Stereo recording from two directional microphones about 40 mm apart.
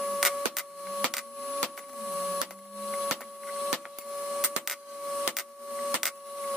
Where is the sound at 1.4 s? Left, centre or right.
Left.